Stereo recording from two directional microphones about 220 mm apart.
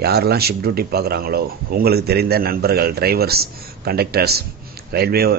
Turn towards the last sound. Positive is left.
turn(degrees=-45)  # may be behind; listen again after turning